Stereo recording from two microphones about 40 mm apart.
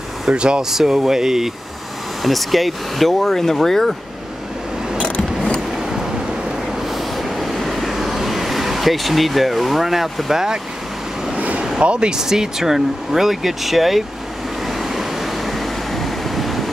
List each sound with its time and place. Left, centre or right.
0.3 s speech: right
0.6 s speech: centre
2.2 s speech: centre
5.8 s vehicle: centre
11.3 s vehicle: right
11.8 s speech: right; by 14.0 s centre
14.7 s vehicle: centre